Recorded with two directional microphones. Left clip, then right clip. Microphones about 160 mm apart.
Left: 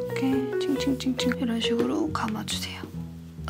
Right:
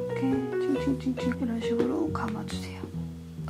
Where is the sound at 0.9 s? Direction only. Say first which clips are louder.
Left 4 dB; 35° left (ahead or behind).